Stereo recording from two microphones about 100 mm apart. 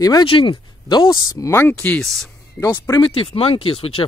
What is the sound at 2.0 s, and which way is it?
Speech, 5° left (ahead or behind).